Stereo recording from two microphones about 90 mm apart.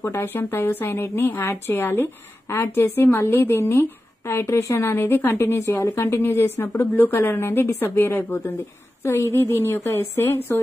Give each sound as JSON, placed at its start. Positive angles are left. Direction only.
{"t": 0.0, "sound": "speech", "side_deg": 25}
{"t": 5.6, "sound": "a woman's voice", "side_deg": 35}